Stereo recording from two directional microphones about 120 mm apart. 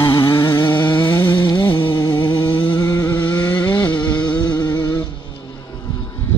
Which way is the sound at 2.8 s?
20° left (ahead or behind).